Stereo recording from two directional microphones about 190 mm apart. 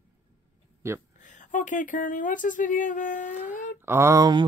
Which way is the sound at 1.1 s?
40° left (ahead or behind).